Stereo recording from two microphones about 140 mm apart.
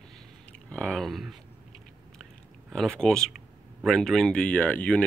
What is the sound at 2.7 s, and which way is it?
Speech, 5° left (ahead or behind).